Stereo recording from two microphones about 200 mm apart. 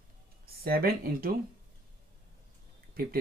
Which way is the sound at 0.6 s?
50° right (ahead or behind).